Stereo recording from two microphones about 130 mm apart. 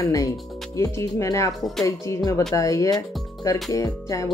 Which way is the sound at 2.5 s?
25° left (ahead or behind).